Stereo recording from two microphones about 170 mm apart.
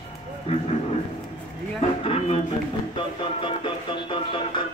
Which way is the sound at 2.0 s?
35° left (ahead or behind).